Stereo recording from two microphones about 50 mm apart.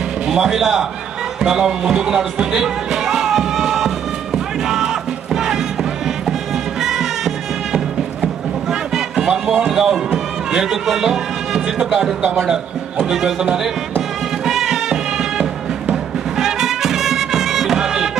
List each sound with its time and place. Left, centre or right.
0.3 s a man's voice: centre
4.6 s music: centre
6.8 s music: centre
8.9 s a sound: centre
9.7 s speech: centre
13.1 s a man's voice: centre
14.4 s music: centre